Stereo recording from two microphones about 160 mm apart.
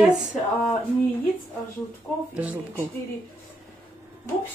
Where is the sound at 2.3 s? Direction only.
10° right (ahead or behind).